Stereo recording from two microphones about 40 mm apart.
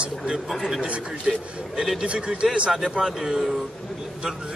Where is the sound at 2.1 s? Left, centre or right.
Right.